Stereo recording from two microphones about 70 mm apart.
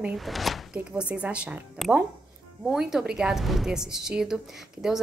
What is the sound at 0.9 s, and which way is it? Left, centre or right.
Speech, centre.